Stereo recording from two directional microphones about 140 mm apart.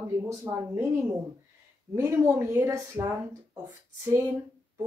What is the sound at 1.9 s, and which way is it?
Speech, 20° right (ahead or behind).